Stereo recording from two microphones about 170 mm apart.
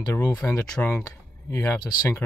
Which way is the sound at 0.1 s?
15° left (ahead or behind).